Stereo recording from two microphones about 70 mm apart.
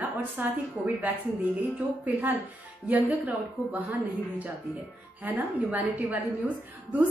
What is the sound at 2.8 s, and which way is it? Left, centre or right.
A woman's voice, right.